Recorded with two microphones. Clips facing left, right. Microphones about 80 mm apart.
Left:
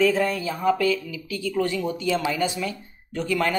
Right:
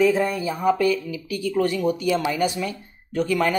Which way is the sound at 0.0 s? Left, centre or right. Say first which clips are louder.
Right 2 dB; centre.